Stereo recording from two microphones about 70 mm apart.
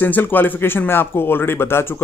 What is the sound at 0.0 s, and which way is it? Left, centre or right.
A man's voice, left.